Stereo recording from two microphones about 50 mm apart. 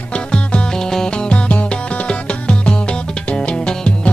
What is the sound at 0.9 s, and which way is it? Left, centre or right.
Music, centre.